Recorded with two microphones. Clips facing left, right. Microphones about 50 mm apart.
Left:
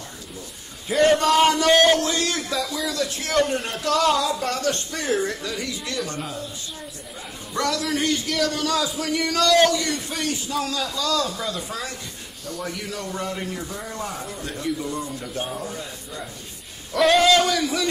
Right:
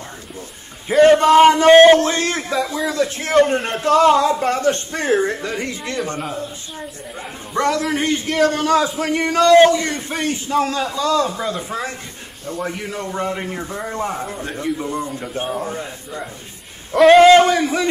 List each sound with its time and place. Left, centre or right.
1.0 s speech: right
7.5 s speech: right